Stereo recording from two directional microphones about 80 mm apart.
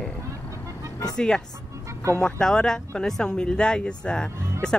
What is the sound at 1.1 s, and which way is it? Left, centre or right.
Speech, centre.